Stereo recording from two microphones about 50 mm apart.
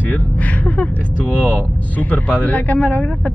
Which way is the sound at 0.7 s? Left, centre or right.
Left.